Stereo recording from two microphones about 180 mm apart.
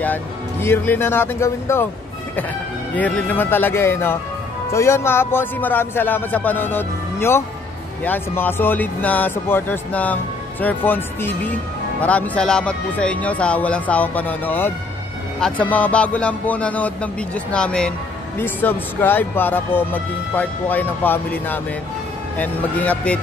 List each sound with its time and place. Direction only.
0.0 s speech: 10° left (ahead or behind)
3.0 s speech: 10° left (ahead or behind)